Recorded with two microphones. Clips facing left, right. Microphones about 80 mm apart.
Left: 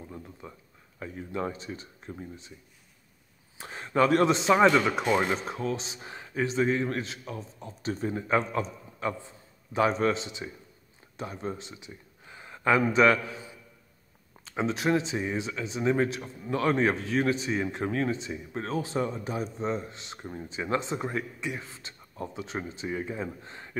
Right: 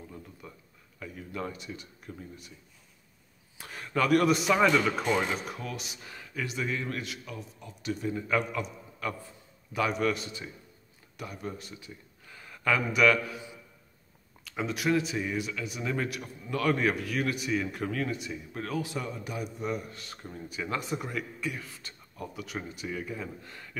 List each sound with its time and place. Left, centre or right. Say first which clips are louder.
0.0 s speech: left 3 dB; left
3.5 s a man's voice: left 5 dB; left